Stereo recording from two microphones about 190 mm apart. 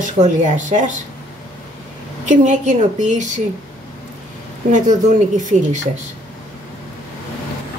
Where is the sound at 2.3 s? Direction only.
40° right (ahead or behind).